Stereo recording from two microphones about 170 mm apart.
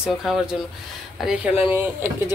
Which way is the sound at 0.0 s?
Centre (ahead or behind).